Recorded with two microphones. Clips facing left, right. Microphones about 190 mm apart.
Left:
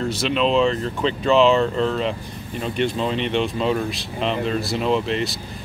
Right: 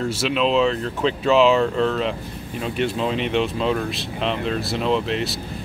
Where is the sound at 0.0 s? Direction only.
5° right (ahead or behind).